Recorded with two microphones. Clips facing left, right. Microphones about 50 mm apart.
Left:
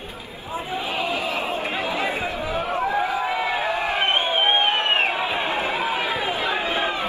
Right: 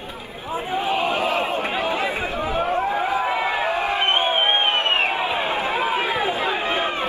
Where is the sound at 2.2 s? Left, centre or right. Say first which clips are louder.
Right 3 dB; right.